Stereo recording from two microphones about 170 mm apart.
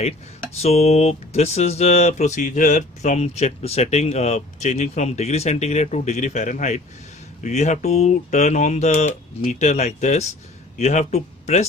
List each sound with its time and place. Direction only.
0.6 s speech: 40° left (ahead or behind)